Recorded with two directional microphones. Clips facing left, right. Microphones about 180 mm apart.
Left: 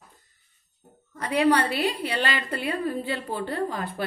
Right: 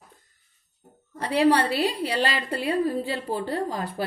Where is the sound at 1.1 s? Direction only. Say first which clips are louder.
Right 1 dB; 30° right (ahead or behind).